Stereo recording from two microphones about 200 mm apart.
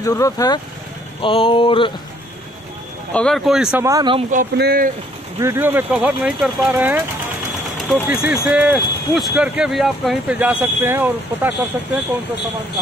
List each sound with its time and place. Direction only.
0.0 s speech: 15° left (ahead or behind)
1.2 s a sound: 25° left (ahead or behind)
3.1 s speech: 5° left (ahead or behind)
3.8 s speech: 20° right (ahead or behind)
4.3 s speech: 45° right (ahead or behind)
5.4 s speech: 10° right (ahead or behind)